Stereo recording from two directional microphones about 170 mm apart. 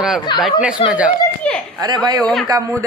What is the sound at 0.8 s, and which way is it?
Speech, 30° left (ahead or behind).